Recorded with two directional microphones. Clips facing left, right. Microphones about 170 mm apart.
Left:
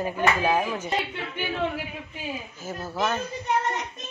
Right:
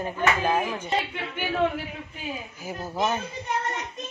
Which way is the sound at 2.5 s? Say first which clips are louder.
Right 1 dB; 15° right (ahead or behind).